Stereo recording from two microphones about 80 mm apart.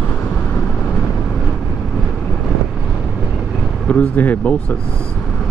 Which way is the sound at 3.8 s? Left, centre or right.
Left.